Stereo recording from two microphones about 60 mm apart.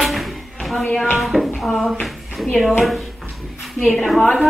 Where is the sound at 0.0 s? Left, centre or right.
Centre.